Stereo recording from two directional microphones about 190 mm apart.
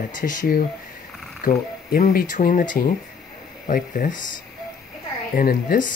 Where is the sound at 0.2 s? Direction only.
45° left (ahead or behind).